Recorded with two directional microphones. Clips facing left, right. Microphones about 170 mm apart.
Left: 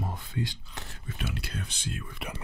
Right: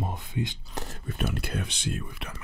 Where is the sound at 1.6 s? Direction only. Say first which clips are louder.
Right 5 dB; 80° right.